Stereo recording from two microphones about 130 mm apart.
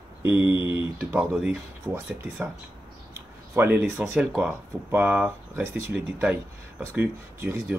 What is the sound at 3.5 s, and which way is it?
Speech, 15° right (ahead or behind).